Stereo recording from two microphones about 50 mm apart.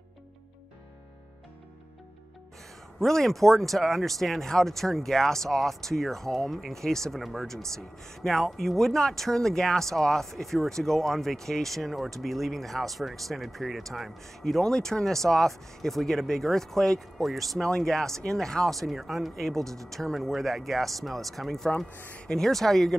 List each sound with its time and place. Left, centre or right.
3.0 s speech: centre
21.9 s speech: left
22.3 s speech: centre